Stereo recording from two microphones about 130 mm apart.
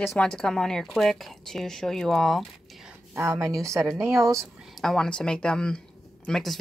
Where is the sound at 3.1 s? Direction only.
20° right (ahead or behind).